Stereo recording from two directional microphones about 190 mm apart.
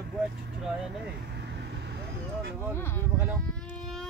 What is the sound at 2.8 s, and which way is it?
Speech, 10° left (ahead or behind).